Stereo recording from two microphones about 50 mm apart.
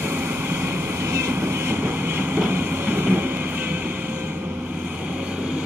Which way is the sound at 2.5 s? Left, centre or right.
Right.